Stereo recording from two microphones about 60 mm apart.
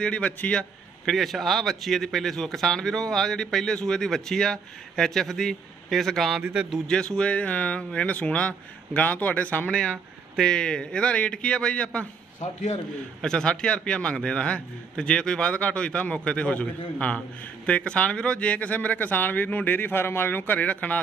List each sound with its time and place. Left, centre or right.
0.0 s a man's voice: centre
1.0 s a man's voice: centre
6.4 s a man's voice: centre
6.9 s speech: centre
13.2 s a man's voice: centre